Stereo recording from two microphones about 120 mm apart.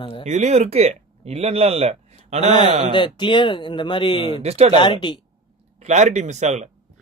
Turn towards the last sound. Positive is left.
turn(degrees=-75)  # may be behind; listen again after turning